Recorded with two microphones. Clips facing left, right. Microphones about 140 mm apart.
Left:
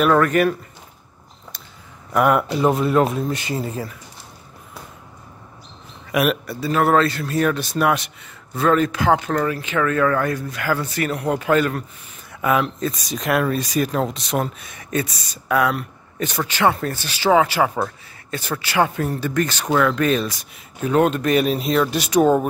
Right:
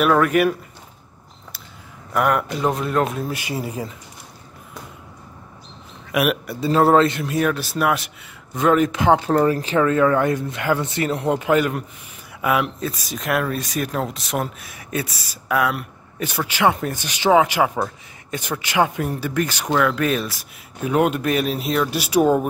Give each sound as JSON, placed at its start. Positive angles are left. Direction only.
{"t": 0.0, "sound": "speech", "side_deg": -5}
{"t": 2.1, "sound": "speech", "side_deg": 5}
{"t": 6.1, "sound": "speech", "side_deg": -10}
{"t": 6.6, "sound": "speech", "side_deg": -25}
{"t": 7.3, "sound": "speech", "side_deg": -5}
{"t": 8.5, "sound": "speech", "side_deg": -15}